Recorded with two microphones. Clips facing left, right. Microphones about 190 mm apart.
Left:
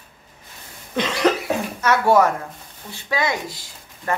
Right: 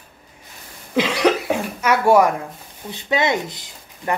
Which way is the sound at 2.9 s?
20° right (ahead or behind).